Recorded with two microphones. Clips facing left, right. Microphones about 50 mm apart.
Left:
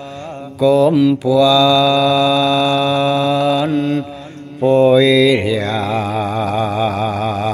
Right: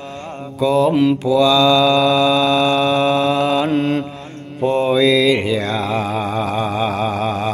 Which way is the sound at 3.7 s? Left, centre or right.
Right.